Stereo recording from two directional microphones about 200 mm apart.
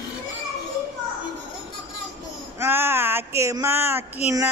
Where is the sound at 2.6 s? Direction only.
10° right (ahead or behind).